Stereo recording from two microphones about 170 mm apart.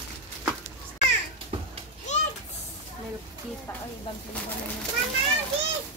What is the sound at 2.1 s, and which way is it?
Children playing, 45° left (ahead or behind).